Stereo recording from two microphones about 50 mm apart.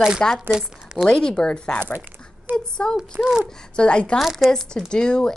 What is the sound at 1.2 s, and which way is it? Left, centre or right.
A woman's voice, centre.